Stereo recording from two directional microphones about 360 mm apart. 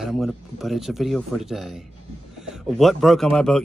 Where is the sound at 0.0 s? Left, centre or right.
Centre.